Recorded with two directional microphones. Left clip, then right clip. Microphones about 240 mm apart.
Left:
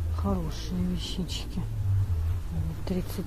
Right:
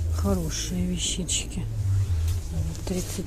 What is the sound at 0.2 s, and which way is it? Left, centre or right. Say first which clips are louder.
Speech: right 4 dB; right.